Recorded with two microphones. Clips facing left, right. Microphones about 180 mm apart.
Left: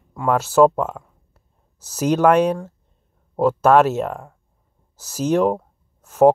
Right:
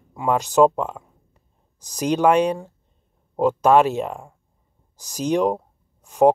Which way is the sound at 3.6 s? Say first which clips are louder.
Left 1 dB; 15° right (ahead or behind).